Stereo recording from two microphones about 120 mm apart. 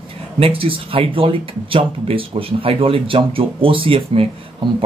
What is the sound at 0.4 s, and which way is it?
Speech, 50° right (ahead or behind).